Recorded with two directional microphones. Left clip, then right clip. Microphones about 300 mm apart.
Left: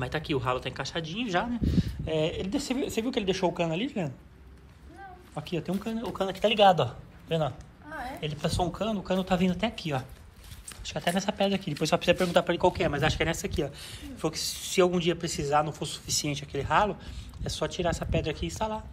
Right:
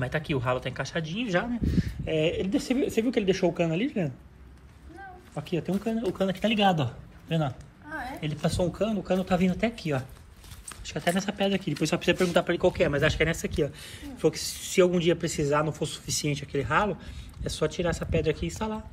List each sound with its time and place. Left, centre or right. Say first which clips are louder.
0.0 s speech: right 1 dB; centre
3.7 s a woman's voice: right 2 dB; left
5.3 s speech: right 2 dB; centre